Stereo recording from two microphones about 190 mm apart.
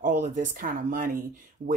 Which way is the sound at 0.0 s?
45° right (ahead or behind).